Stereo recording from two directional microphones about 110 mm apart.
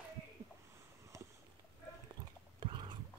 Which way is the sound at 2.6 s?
45° right (ahead or behind).